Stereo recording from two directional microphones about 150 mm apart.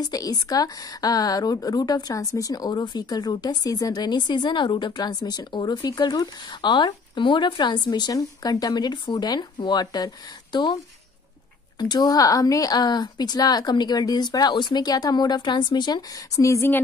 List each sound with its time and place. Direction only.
0.0 s speech: 25° left (ahead or behind)
11.8 s speech: 25° left (ahead or behind)